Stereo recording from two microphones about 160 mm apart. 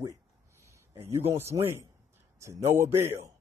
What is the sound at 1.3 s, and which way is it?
Speech, 15° right (ahead or behind).